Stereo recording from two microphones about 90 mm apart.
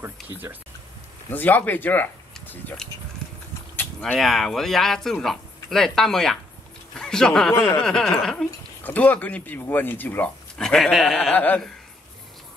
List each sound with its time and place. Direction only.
1.3 s speech: 20° left (ahead or behind)
4.2 s speech: centre (ahead or behind)
8.8 s speech: 15° left (ahead or behind)
10.5 s speech: 5° left (ahead or behind)
11.1 s speech: 20° left (ahead or behind)